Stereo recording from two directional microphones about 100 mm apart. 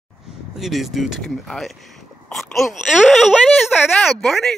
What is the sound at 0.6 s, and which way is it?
Speech, centre (ahead or behind).